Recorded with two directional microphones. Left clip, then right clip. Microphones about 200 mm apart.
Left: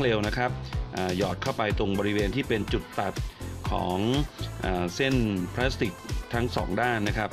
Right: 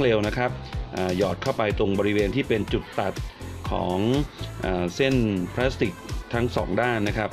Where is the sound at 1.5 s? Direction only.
15° left (ahead or behind).